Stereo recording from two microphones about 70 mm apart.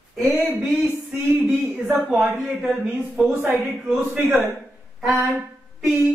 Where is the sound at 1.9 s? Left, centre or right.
Centre.